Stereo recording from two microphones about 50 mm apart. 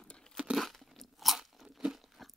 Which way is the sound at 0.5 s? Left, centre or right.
Centre.